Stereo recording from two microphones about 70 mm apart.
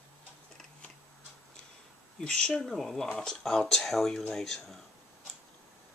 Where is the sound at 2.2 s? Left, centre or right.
Centre.